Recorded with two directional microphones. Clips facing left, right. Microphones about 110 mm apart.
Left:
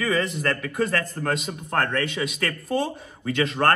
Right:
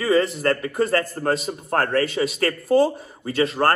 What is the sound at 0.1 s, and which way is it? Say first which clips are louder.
A man's voice: right 10 dB; 35° right (ahead or behind).